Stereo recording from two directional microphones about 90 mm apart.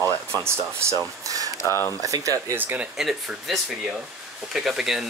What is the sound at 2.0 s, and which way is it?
Speech, 40° right (ahead or behind).